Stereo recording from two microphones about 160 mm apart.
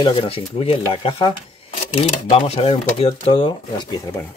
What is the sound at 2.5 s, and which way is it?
Speech, 40° left (ahead or behind).